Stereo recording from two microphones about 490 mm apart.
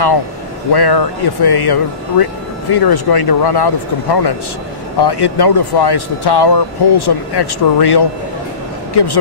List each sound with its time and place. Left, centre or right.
0.7 s speech: left